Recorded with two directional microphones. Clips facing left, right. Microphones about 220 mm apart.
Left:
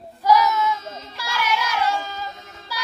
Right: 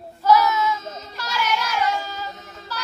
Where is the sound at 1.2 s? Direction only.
10° left (ahead or behind).